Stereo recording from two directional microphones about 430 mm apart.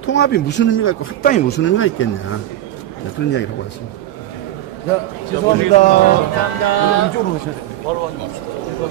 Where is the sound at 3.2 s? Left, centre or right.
Left.